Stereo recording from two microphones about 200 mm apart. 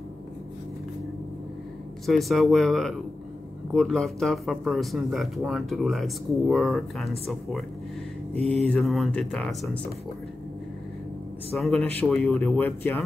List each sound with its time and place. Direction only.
2.0 s speech: centre (ahead or behind)
11.5 s speech: centre (ahead or behind)